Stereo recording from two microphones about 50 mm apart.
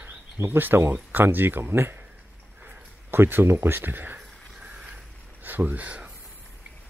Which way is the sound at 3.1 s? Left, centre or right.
Right.